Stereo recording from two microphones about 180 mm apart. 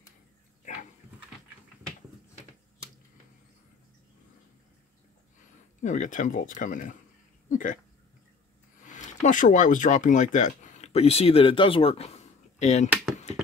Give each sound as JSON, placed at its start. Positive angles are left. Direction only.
{"t": 5.8, "sound": "speech", "side_deg": 45}
{"t": 7.4, "sound": "a sound", "side_deg": 45}
{"t": 8.8, "sound": "speech", "side_deg": 45}